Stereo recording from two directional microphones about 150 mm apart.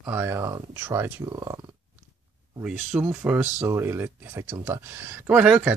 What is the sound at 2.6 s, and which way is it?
Speech, 5° right (ahead or behind).